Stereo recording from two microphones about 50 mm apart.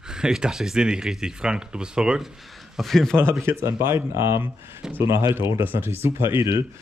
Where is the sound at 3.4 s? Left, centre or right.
Right.